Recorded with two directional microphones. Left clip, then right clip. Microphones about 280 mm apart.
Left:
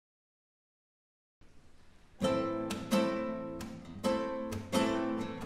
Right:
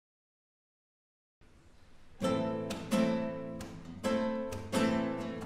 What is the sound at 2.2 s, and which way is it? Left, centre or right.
Music, centre.